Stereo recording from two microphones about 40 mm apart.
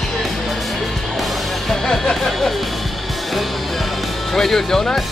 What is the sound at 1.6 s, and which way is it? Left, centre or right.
Music, centre.